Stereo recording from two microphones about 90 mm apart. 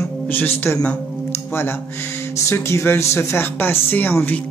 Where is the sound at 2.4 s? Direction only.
30° left (ahead or behind).